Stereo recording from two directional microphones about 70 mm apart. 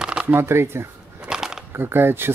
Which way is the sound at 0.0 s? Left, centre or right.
Centre.